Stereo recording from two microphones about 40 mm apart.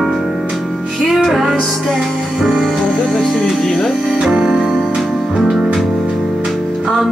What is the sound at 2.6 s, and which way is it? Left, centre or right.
Music, centre.